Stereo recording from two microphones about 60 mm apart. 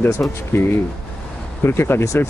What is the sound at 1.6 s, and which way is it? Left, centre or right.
Speech, left.